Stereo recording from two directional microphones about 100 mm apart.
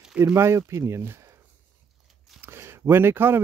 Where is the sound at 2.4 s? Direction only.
25° right (ahead or behind).